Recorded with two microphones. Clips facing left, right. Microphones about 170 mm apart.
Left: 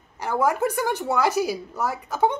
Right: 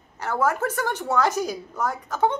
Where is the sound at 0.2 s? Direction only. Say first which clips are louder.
Left 2 dB; 15° left (ahead or behind).